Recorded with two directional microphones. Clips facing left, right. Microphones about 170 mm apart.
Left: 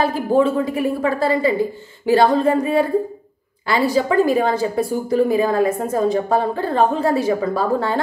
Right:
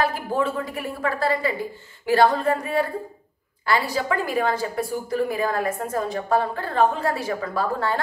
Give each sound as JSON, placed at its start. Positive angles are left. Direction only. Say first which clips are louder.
{"t": 0.0, "sound": "a woman's voice", "louder": "left 7 dB", "side_deg": 25}